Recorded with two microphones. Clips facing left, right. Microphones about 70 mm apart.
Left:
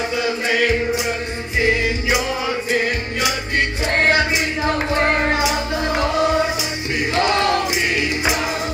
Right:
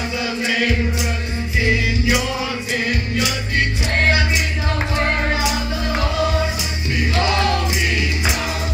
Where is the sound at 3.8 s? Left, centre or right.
Left.